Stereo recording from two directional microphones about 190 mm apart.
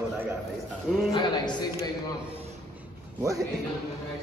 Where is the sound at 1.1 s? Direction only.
20° left (ahead or behind).